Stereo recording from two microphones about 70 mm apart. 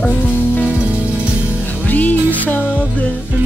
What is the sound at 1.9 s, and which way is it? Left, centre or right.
Music, left.